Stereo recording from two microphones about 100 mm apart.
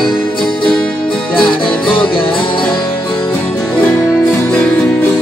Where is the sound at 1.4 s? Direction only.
55° left (ahead or behind).